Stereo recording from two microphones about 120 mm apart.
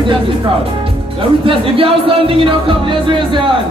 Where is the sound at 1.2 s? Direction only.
50° right (ahead or behind).